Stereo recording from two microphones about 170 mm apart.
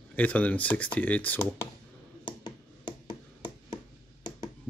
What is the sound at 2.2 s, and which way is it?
Finger snapping, 25° left (ahead or behind).